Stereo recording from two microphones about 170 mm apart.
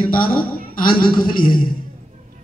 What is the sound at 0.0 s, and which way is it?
A man's voice, 55° left (ahead or behind).